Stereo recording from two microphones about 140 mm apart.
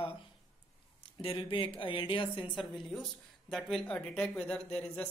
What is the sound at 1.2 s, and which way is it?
Speech, 40° left (ahead or behind).